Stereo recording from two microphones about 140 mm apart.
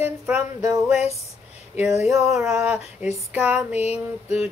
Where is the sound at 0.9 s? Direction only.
50° left (ahead or behind).